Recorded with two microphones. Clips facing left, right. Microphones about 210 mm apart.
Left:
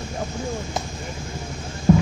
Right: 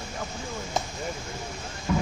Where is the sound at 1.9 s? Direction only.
40° left (ahead or behind).